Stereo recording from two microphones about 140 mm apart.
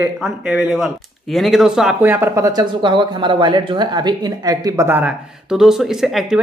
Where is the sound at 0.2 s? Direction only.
5° right (ahead or behind).